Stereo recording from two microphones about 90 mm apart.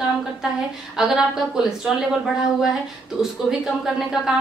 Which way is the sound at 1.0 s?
5° right (ahead or behind).